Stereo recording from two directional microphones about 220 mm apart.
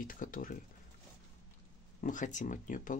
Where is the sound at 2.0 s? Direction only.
35° left (ahead or behind).